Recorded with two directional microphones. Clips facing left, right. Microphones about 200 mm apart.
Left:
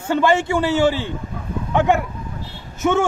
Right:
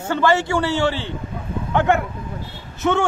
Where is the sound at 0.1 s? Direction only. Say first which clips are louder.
Left 1 dB; 20° left (ahead or behind).